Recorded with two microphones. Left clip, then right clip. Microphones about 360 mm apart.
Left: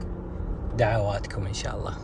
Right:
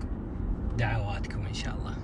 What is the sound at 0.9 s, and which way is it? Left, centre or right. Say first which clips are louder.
Speech: left 8 dB; centre.